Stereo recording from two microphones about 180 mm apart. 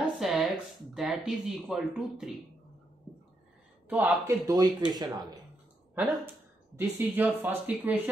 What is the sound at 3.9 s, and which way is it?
Speech, 10° right (ahead or behind).